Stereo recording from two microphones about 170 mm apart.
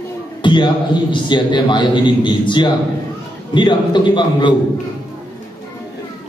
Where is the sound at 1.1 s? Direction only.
25° left (ahead or behind).